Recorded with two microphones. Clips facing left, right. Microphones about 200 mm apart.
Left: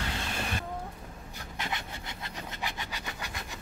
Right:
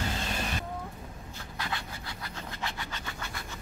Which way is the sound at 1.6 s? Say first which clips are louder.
Even; 20° left (ahead or behind).